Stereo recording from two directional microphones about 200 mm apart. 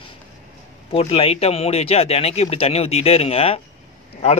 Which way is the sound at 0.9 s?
30° left (ahead or behind).